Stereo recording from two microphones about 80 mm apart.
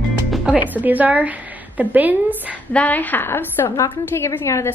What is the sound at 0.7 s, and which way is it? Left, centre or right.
A woman's voice, right.